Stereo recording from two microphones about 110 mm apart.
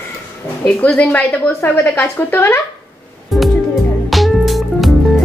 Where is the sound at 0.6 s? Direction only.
10° left (ahead or behind).